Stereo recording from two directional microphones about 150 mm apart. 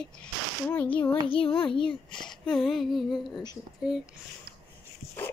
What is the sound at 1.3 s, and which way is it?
Child singing, 35° left (ahead or behind).